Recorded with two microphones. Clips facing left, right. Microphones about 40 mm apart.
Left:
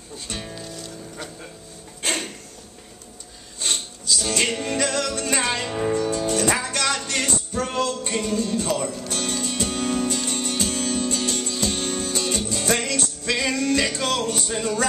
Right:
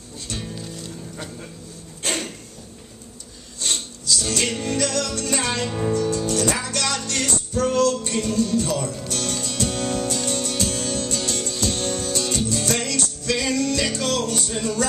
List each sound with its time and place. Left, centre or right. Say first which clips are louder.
0.3 s speech: right 1 dB; centre
2.0 s a sound: even; centre
3.6 s music: even; centre
4.7 s speech: even; centre
9.0 s music: even; centre